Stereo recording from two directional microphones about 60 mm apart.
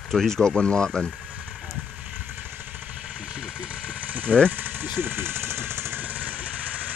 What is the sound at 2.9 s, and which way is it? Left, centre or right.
Vehicle, centre.